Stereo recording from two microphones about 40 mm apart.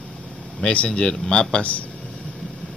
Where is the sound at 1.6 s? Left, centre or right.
Left.